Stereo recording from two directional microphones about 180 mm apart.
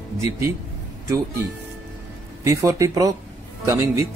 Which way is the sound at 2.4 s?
15° right (ahead or behind).